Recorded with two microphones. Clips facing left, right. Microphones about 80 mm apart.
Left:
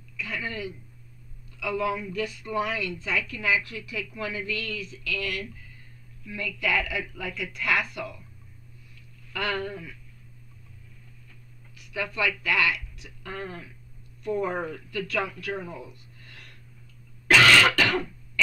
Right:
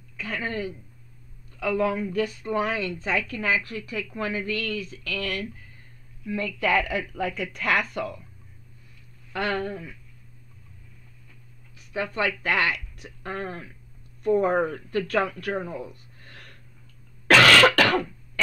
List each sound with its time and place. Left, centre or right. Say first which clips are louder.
0.2 s a woman's voice: right 3 dB; right
9.3 s speech: right 2 dB; right
11.7 s speech: right 3 dB; right
17.3 s cough: right 3 dB; right